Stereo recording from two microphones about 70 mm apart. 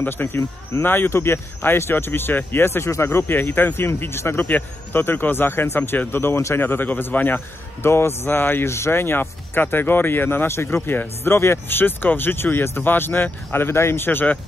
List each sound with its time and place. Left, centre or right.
0.0 s speech: left